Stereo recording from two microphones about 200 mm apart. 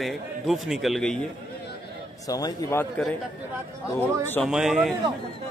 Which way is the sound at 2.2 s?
15° left (ahead or behind).